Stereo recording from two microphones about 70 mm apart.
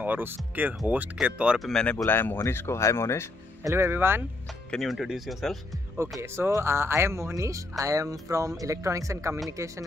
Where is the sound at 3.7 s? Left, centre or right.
Right.